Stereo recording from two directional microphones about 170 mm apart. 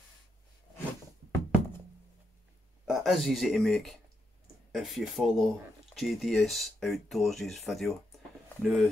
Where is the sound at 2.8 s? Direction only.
Centre (ahead or behind).